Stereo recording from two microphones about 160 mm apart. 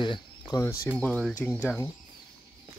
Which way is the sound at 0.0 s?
30° left (ahead or behind).